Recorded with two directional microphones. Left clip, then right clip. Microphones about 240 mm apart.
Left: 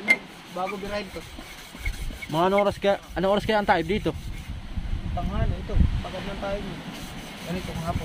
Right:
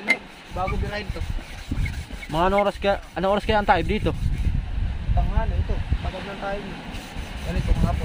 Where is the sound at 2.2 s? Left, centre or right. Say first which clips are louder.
Right 1 dB; centre.